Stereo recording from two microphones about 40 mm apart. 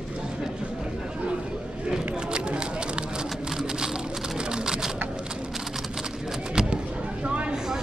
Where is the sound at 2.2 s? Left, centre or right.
Right.